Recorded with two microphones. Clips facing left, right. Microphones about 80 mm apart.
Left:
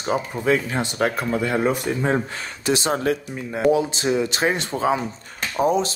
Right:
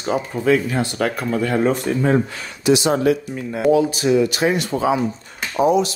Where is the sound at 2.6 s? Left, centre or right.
Left.